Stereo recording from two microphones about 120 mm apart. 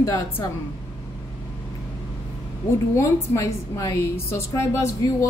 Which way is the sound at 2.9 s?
25° left (ahead or behind).